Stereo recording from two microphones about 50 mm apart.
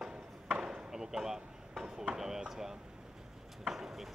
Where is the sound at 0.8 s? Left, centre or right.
Centre.